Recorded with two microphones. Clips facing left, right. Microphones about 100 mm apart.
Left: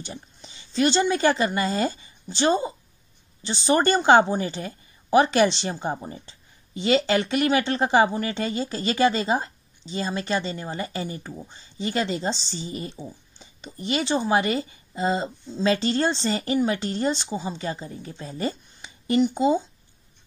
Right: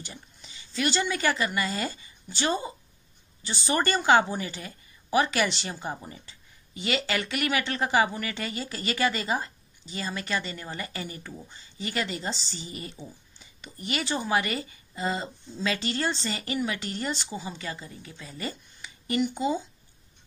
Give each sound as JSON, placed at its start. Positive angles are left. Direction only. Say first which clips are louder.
{"t": 0.0, "sound": "a woman's voice", "louder": "left 6 dB", "side_deg": 30}